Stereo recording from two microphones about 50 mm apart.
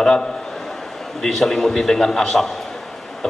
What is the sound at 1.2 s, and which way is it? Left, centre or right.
A man's voice, centre.